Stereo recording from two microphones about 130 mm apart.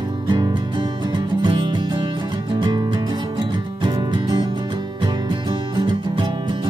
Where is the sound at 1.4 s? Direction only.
35° right (ahead or behind).